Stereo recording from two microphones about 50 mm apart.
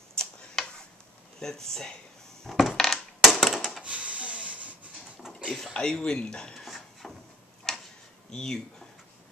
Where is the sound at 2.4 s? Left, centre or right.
Centre.